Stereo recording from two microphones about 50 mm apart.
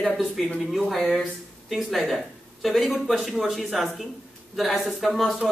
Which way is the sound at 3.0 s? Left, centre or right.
Centre.